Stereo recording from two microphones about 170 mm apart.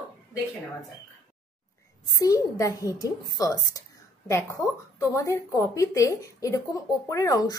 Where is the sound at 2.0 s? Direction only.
20° left (ahead or behind).